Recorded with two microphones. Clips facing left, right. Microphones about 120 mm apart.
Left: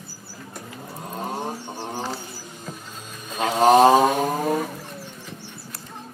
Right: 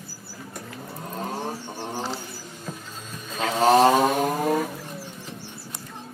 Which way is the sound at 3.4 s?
15° left (ahead or behind).